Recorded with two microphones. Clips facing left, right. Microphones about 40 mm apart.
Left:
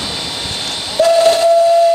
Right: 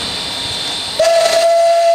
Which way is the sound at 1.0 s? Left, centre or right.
Right.